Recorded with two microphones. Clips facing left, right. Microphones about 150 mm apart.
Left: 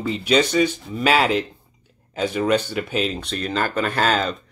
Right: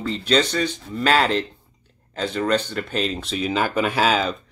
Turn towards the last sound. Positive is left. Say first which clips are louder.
# right 1 dB
turn(degrees=-5)  # may be behind; listen again after turning